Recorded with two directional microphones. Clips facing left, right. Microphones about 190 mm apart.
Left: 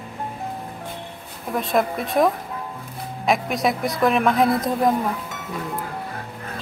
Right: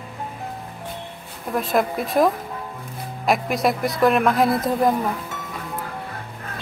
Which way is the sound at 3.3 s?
Centre (ahead or behind).